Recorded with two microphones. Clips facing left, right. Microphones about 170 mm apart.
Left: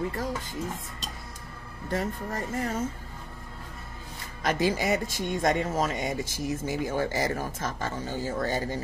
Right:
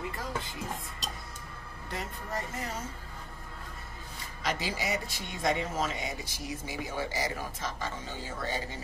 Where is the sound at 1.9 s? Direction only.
50° left (ahead or behind).